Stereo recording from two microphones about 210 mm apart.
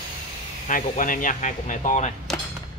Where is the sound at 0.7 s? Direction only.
40° left (ahead or behind).